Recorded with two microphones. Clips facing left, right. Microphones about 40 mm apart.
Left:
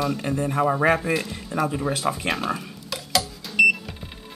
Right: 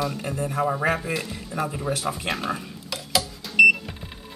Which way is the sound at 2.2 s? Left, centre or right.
Centre.